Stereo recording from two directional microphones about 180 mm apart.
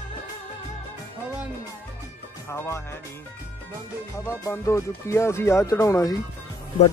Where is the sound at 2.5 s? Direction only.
15° left (ahead or behind).